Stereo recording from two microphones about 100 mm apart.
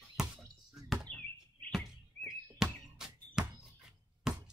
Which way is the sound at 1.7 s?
5° right (ahead or behind).